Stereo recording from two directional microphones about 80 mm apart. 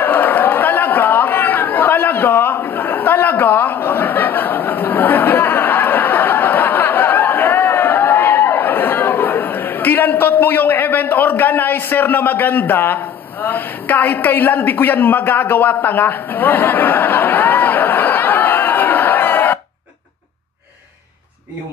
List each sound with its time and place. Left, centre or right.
0.0 s chatter: left